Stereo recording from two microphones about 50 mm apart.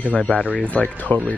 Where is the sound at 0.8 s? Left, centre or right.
Left.